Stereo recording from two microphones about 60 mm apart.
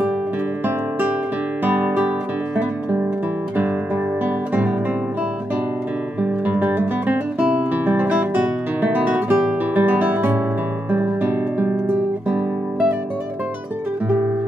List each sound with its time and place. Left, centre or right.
1.6 s music: right
6.2 s guitar: right
10.9 s music: right
12.3 s guitar: right
14.0 s guitar: right